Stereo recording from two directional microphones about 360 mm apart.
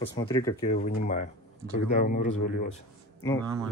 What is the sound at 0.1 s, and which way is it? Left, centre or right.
Speech, centre.